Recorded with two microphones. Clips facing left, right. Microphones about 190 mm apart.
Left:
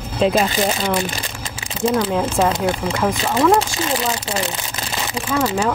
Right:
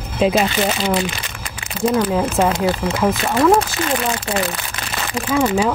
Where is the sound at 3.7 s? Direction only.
20° left (ahead or behind).